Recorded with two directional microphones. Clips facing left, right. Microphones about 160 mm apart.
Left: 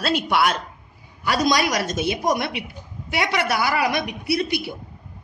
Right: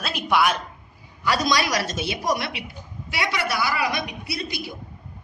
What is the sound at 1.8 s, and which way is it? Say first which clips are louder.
A woman's voice: left 3 dB; 50° left (ahead or behind).